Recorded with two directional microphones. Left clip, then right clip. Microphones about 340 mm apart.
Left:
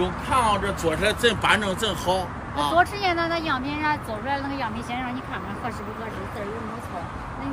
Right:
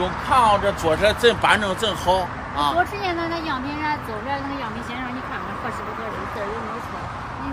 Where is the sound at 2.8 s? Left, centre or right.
Centre.